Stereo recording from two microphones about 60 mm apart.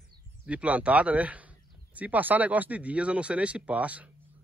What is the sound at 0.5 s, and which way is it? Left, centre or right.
Speech, right.